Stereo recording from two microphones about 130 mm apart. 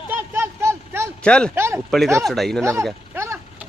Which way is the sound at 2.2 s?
Centre (ahead or behind).